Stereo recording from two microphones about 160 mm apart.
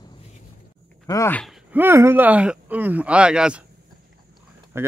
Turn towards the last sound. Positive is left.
turn(degrees=-15)  # may be behind; listen again after turning